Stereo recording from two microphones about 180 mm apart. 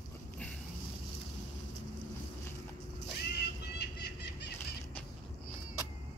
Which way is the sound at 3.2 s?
65° left (ahead or behind).